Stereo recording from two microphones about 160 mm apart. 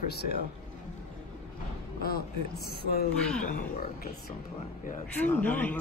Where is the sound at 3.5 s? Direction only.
55° left (ahead or behind).